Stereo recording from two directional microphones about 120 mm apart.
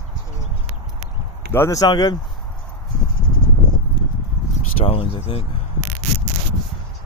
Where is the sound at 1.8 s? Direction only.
35° left (ahead or behind).